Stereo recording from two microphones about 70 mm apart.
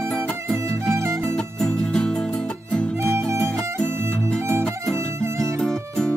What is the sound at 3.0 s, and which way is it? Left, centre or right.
Music, right.